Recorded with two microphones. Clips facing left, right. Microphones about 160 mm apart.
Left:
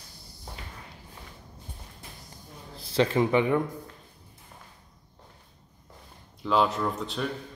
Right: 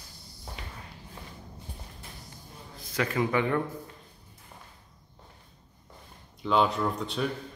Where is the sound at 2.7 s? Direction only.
30° left (ahead or behind).